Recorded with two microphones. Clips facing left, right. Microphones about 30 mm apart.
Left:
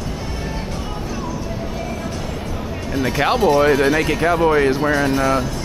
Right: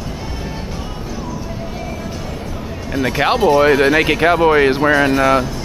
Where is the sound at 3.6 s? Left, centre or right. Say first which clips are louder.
Right 3 dB; right.